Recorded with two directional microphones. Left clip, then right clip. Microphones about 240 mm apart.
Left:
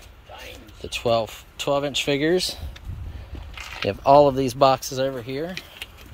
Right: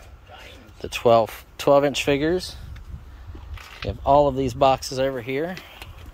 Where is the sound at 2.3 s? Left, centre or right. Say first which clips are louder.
Left 3 dB; centre.